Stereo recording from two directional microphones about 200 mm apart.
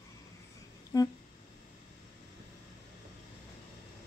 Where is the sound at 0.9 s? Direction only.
20° left (ahead or behind).